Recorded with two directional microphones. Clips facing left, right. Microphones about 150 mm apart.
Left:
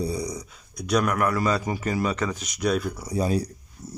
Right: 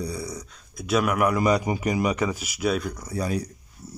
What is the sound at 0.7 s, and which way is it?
Speech, 5° right (ahead or behind).